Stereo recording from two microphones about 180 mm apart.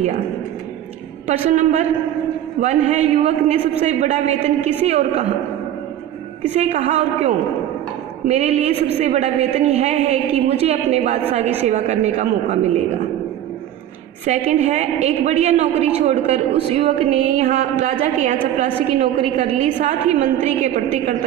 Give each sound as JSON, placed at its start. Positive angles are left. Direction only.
{"t": 1.2, "sound": "a woman's voice", "side_deg": -40}
{"t": 6.5, "sound": "a woman's voice", "side_deg": -35}
{"t": 14.2, "sound": "a woman's voice", "side_deg": -40}